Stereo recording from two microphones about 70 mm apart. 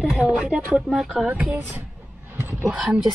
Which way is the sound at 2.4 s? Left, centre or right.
Right.